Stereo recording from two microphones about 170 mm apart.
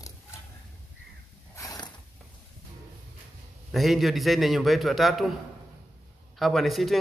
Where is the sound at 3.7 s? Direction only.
Centre (ahead or behind).